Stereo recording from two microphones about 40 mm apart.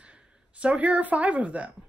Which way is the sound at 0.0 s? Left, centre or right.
Right.